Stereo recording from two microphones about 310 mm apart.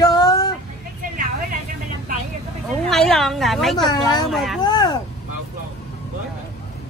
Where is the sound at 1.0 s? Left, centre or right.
Right.